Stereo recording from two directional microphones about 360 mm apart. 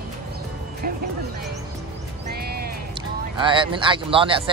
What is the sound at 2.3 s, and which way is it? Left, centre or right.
Music, right.